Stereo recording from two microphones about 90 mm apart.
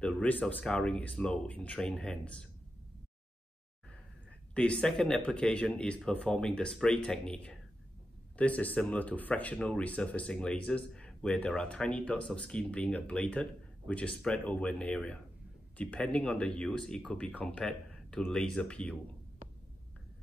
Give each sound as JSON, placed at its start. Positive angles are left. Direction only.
{"t": 0.0, "sound": "speech", "side_deg": 15}
{"t": 0.7, "sound": "speech", "side_deg": 10}
{"t": 4.6, "sound": "speech", "side_deg": 10}